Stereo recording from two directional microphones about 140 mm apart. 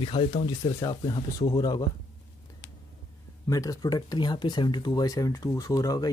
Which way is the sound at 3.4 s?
25° left (ahead or behind).